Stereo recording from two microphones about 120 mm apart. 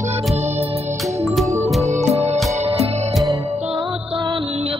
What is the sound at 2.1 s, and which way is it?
Music, 60° right (ahead or behind).